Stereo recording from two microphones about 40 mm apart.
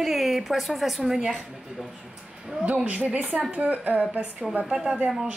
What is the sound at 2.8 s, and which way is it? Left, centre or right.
A woman's voice, right.